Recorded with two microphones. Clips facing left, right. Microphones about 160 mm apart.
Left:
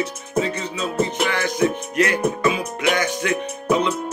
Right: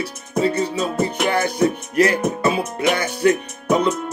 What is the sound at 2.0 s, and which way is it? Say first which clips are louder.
Speech: right 3 dB; 35° right (ahead or behind).